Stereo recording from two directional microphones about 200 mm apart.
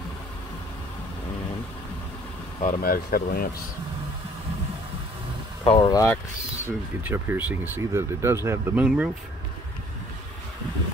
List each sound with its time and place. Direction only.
2.6 s speech: 40° left (ahead or behind)
5.6 s speech: 25° left (ahead or behind)
7.1 s speech: 10° right (ahead or behind)